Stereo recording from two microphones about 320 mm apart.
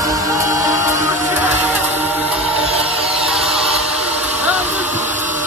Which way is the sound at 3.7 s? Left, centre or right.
Centre.